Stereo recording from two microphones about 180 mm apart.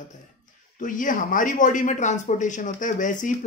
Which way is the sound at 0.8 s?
45° left (ahead or behind).